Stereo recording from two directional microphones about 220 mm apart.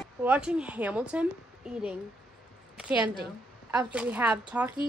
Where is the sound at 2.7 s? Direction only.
5° right (ahead or behind).